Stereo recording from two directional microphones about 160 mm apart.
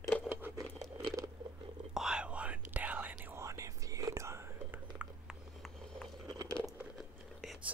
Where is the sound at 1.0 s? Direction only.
20° right (ahead or behind).